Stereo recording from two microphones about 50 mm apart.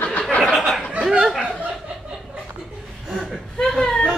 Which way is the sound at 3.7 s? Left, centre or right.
Centre.